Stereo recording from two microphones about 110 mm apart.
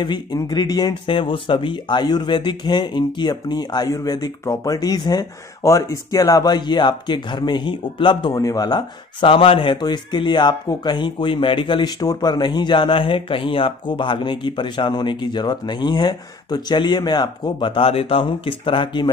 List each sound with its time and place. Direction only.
0.0 s speech: 45° left (ahead or behind)
1.0 s speech: 50° left (ahead or behind)